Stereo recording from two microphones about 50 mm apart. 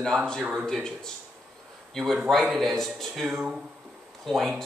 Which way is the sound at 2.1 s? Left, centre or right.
Centre.